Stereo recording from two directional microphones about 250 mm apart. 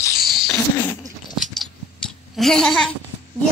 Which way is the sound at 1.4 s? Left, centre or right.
Centre.